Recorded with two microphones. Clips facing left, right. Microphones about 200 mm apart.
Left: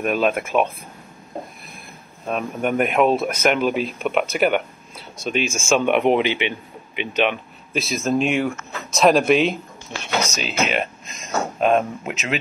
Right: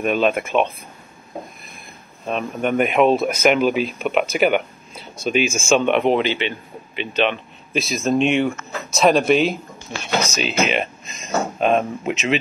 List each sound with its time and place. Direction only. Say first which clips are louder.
0.0 s speech: right 1 dB; centre (ahead or behind)
2.2 s speech: right 1 dB; 5° left (ahead or behind)
7.7 s speech: right 2 dB; centre (ahead or behind)